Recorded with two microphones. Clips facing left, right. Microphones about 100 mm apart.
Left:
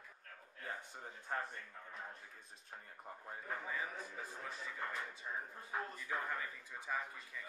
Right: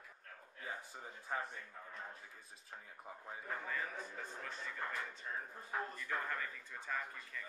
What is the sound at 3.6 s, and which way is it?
Speech, 10° left (ahead or behind).